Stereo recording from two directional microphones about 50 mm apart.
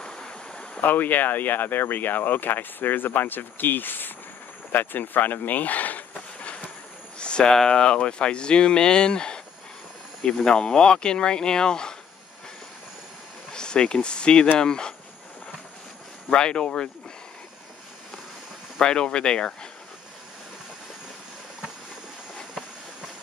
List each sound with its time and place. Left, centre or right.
0.0 s stream: centre
0.7 s speech: left
4.7 s a sound: left; by 7.5 s centre
7.5 s speech: centre
13.5 s speech: centre
16.3 s speech: centre
18.8 s speech: centre